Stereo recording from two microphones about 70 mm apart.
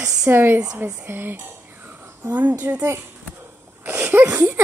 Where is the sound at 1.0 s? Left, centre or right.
Right.